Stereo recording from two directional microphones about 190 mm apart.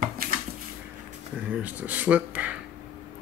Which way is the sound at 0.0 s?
50° right (ahead or behind).